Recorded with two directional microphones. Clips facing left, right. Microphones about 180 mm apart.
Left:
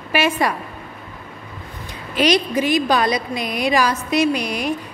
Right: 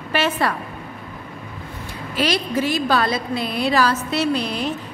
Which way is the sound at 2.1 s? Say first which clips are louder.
Left 4 dB; 20° left (ahead or behind).